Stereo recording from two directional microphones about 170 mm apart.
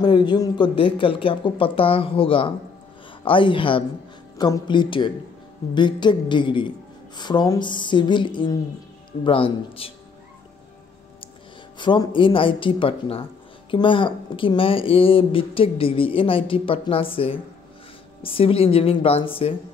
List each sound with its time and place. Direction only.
0.0 s a woman's voice: 25° left (ahead or behind)
11.8 s a woman's voice: 30° left (ahead or behind)